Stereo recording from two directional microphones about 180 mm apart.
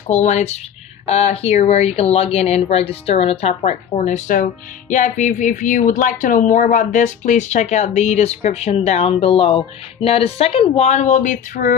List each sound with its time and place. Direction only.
0.1 s speech: 40° left (ahead or behind)